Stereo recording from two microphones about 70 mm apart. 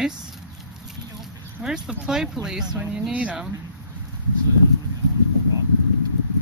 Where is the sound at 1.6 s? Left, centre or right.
Centre.